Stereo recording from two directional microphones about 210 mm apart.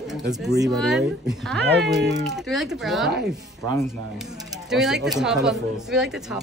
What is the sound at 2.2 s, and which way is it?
Speech, centre (ahead or behind).